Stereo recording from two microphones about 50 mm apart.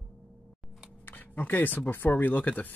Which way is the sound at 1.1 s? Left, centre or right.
Left.